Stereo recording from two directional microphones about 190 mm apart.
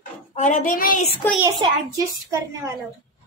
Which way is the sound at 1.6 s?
20° right (ahead or behind).